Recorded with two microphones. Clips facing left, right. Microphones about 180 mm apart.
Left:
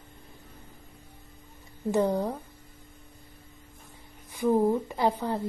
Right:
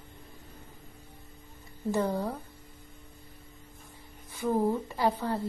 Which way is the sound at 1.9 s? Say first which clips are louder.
Left 4 dB; 15° left (ahead or behind).